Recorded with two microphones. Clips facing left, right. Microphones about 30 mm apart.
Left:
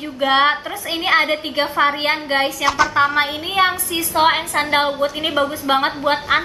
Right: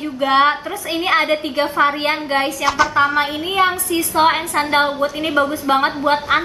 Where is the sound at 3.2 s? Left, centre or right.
Centre.